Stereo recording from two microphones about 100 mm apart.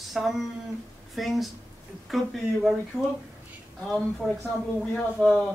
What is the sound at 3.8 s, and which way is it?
Speech, centre (ahead or behind).